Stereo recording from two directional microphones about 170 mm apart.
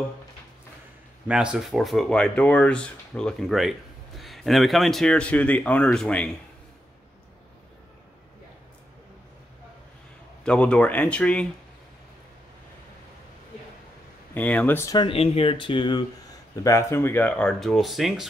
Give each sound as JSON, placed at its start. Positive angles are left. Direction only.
{"t": 1.2, "sound": "speech", "side_deg": -5}
{"t": 10.4, "sound": "speech", "side_deg": 5}
{"t": 14.3, "sound": "speech", "side_deg": 10}
{"t": 15.0, "sound": "speech", "side_deg": 35}
{"t": 16.6, "sound": "speech", "side_deg": 15}